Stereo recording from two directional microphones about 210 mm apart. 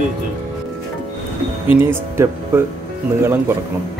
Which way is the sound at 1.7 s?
10° right (ahead or behind).